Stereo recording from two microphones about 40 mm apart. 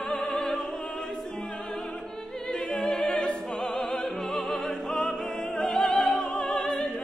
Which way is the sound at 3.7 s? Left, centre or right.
Centre.